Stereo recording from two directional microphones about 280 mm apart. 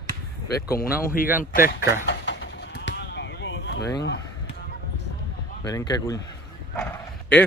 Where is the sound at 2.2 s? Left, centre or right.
Left.